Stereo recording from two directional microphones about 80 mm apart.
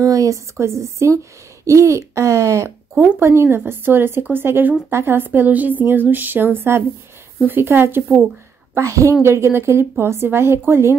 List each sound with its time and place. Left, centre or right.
0.0 s a woman's voice: right
2.9 s speech: centre
3.2 s a woman's voice: right
8.7 s a woman's voice: right